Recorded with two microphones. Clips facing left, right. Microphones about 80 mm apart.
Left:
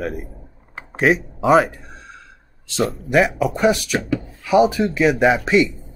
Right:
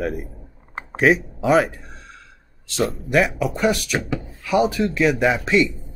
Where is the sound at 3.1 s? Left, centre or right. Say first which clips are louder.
Left 3 dB; centre.